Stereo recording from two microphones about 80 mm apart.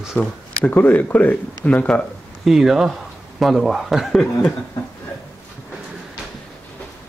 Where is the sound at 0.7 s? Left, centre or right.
Left.